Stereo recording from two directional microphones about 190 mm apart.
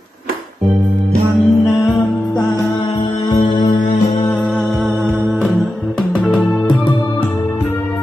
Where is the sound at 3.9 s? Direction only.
40° left (ahead or behind).